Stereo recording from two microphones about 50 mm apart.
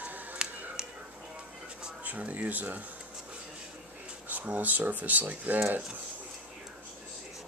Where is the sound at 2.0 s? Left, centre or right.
Right.